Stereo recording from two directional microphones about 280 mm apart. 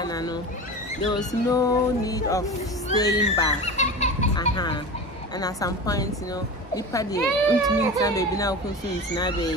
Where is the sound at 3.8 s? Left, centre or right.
Left.